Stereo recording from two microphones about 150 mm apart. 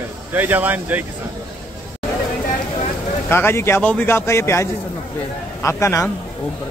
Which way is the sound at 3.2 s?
15° left (ahead or behind).